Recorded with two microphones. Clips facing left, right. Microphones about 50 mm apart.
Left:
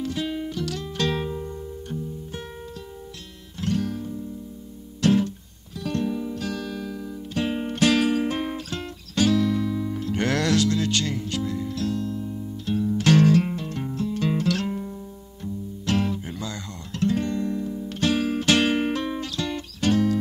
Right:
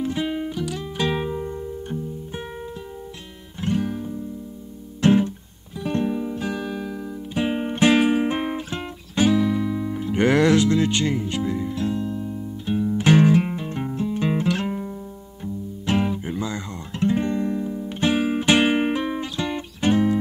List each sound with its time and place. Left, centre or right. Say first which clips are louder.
0.0 s music: right 3 dB; right
3.6 s music: right 2 dB; centre